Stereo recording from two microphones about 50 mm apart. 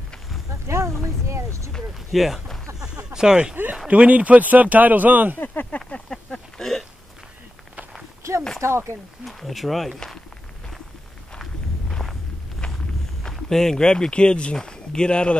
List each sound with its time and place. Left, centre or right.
0.7 s speech: right
2.1 s speech: centre
2.8 s a sound: centre
3.8 s speech: right
5.4 s a sound: left
5.8 s a sound: centre
8.5 s speech: right
9.2 s speech: centre
11.9 s walk: centre
13.2 s speech: centre